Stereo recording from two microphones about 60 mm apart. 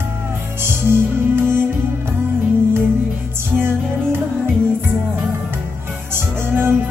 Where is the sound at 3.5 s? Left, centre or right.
Right.